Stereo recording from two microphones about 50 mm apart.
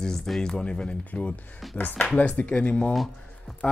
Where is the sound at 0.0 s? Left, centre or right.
Centre.